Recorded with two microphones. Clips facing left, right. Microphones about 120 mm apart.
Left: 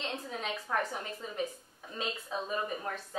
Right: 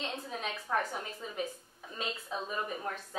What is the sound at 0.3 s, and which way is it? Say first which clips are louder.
A woman's voice: right 1 dB; centre (ahead or behind).